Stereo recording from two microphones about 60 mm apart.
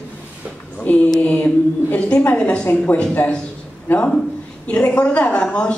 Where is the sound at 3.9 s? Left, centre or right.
Left.